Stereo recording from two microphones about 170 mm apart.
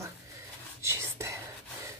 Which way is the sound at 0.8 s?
15° right (ahead or behind).